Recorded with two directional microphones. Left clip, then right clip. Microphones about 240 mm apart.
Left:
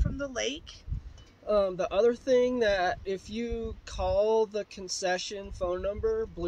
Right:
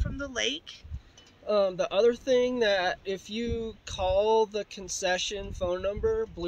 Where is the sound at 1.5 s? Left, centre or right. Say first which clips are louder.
Right 1 dB; centre.